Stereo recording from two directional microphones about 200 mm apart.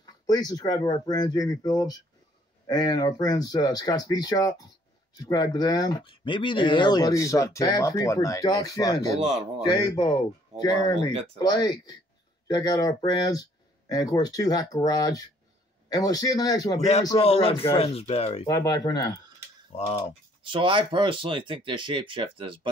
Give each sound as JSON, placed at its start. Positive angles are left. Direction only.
{"t": 0.0, "sound": "speech", "side_deg": 20}
{"t": 18.5, "sound": "speech", "side_deg": 20}
{"t": 20.4, "sound": "speech", "side_deg": -25}